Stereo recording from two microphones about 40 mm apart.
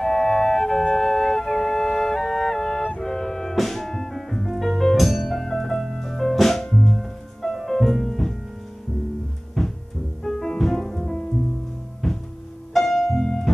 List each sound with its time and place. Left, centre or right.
0.0 s music: centre
9.6 s hum: centre
10.3 s music: centre
10.8 s music: centre
12.0 s music: centre